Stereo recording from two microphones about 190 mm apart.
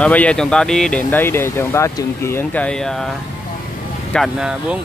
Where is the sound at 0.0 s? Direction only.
5° left (ahead or behind).